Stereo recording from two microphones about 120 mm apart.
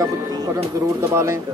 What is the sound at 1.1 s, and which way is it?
Speech, 25° right (ahead or behind).